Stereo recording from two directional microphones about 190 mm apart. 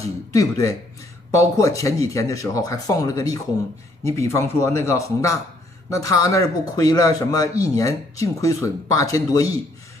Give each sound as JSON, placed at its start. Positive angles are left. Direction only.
{"t": 0.0, "sound": "a man's voice", "side_deg": 15}